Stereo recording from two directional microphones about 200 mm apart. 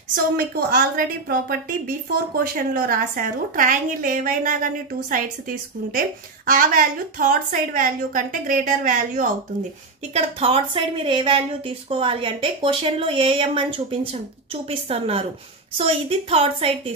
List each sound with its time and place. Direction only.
0.1 s a woman's voice: 50° right (ahead or behind)
10.1 s speech: 25° right (ahead or behind)